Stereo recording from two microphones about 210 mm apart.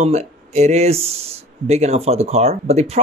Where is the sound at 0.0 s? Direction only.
35° right (ahead or behind).